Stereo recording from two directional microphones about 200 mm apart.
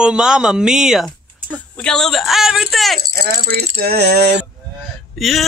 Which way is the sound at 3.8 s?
55° right (ahead or behind).